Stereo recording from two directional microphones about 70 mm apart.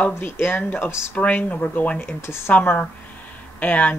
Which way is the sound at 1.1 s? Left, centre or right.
Centre.